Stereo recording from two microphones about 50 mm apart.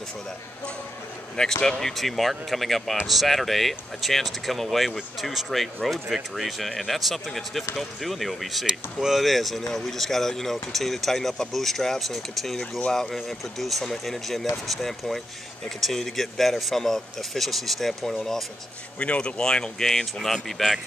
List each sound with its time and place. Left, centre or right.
1.3 s speech: centre
18.9 s speech: left; by 20.8 s centre